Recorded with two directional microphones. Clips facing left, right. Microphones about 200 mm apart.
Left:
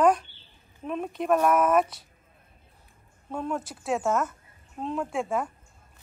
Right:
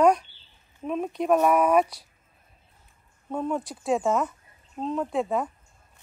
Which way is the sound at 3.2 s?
Centre (ahead or behind).